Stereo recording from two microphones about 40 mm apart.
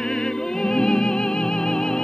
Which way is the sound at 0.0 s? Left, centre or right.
Centre.